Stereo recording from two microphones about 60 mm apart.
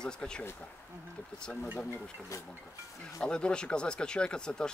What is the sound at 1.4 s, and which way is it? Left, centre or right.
Speech, centre.